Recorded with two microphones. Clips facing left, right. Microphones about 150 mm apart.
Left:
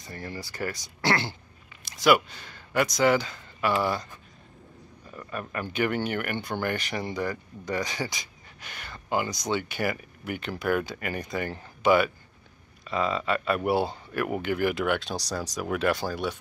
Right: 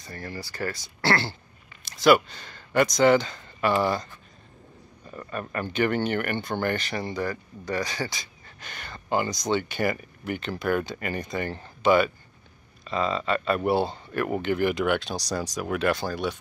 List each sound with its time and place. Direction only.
0.0 s speech: 20° left (ahead or behind); by 4.1 s 5° left (ahead or behind)
5.3 s speech: 5° left (ahead or behind)
8.6 s speech: 5° left (ahead or behind)